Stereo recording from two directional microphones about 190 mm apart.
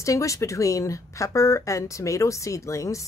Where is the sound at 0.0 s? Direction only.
15° left (ahead or behind).